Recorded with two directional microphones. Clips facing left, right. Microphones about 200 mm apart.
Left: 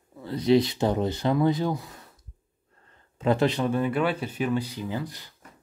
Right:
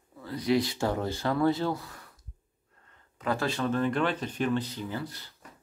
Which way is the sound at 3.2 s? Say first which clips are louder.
Left 6 dB; 20° left (ahead or behind).